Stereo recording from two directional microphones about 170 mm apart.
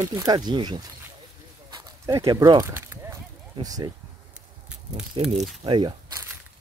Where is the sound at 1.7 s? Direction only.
25° right (ahead or behind).